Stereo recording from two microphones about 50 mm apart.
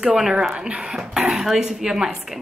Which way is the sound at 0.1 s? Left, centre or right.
Centre.